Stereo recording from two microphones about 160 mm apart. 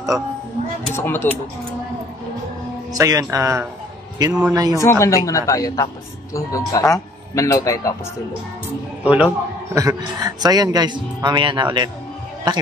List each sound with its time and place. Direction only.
0.9 s speech: 15° left (ahead or behind)
2.9 s a man's voice: 20° right (ahead or behind)
4.7 s speech: 15° left (ahead or behind)
9.0 s a man's voice: 10° right (ahead or behind)
9.8 s a man's voice: 20° right (ahead or behind)